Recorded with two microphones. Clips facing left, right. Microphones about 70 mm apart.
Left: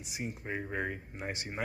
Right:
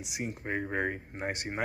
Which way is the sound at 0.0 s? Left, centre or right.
Right.